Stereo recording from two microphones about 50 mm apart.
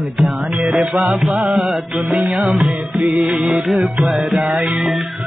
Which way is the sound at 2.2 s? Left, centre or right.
Centre.